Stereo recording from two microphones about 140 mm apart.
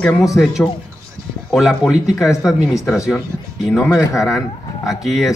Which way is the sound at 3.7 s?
10° left (ahead or behind).